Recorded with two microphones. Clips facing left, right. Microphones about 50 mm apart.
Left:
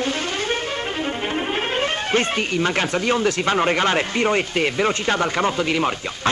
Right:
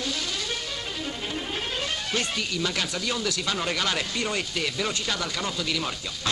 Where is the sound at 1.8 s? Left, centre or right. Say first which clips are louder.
Left 9 dB; left.